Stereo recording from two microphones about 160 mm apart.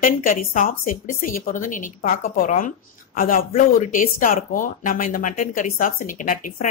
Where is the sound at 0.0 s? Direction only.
60° left (ahead or behind).